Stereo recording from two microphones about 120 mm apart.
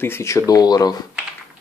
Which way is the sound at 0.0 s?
20° left (ahead or behind).